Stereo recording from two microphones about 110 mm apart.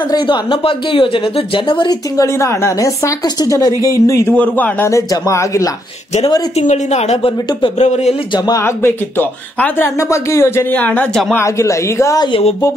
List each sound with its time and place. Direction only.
0.1 s speech: 45° left (ahead or behind)
2.2 s speech: 25° left (ahead or behind)
4.3 s speech: 15° left (ahead or behind)
6.5 s speech: 85° left
8.5 s speech: 25° left (ahead or behind)
10.7 s speech: 15° left (ahead or behind)
11.3 s speech: 25° left (ahead or behind)
12.3 s speech: 60° left (ahead or behind)